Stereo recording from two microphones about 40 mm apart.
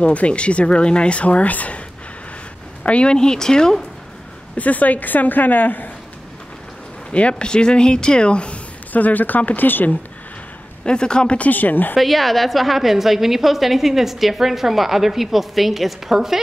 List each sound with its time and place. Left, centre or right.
0.0 s speech: left
2.8 s speech: left
4.6 s a woman's voice: left
7.1 s speech: left
8.9 s a woman's voice: left
10.9 s speech: left
11.3 s a woman's voice: left
12.0 s a woman's voice: centre